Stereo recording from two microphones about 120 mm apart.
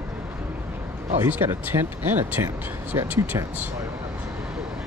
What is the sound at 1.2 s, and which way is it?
Speech, 20° right (ahead or behind).